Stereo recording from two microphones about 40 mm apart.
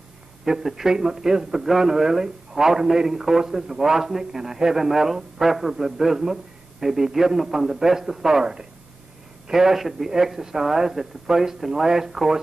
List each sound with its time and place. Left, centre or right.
0.5 s a man's voice: centre